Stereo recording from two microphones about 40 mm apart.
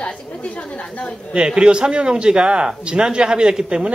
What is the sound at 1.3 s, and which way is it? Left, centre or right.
Speech, right.